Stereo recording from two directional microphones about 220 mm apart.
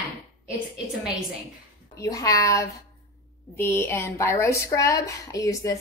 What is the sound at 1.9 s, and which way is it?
A woman's voice, 15° left (ahead or behind).